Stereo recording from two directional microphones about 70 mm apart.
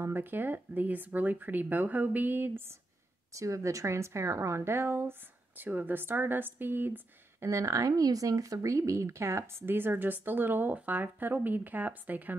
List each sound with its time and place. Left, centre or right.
0.0 s speech: right
3.3 s speech: right
7.4 s speech: right